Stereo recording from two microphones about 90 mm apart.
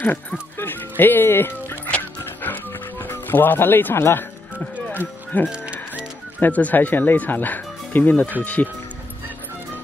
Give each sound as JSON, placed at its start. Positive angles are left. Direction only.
{"t": 0.0, "sound": "music", "side_deg": 20}
{"t": 5.5, "sound": "music", "side_deg": -15}
{"t": 6.4, "sound": "speech", "side_deg": 20}